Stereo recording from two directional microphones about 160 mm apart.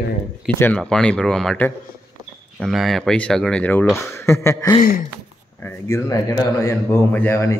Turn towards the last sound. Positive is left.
turn(degrees=15)  # may be behind; listen again after turning